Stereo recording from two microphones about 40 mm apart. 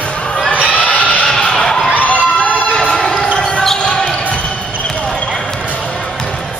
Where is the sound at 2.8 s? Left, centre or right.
Centre.